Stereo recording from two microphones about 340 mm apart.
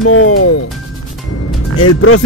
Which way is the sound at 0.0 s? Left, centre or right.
Left.